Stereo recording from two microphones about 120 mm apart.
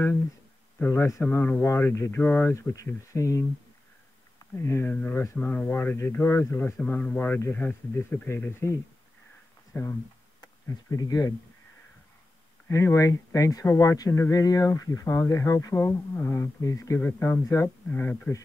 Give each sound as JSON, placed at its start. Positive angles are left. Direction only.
{"t": 0.7, "sound": "speech", "side_deg": 20}
{"t": 4.6, "sound": "speech", "side_deg": 20}
{"t": 9.7, "sound": "speech", "side_deg": 25}
{"t": 12.6, "sound": "speech", "side_deg": 25}